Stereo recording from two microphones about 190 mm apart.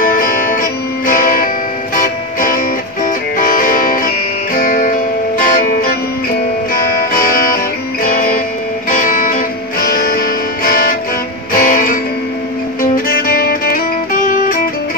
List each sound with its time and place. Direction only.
0.0 s music: 45° left (ahead or behind)